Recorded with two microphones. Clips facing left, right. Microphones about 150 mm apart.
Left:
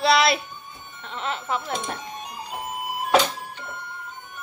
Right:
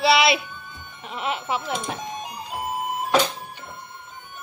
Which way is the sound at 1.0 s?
10° right (ahead or behind).